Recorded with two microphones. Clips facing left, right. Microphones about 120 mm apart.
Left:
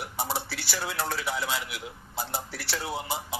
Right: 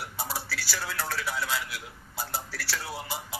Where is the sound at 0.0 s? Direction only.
20° left (ahead or behind).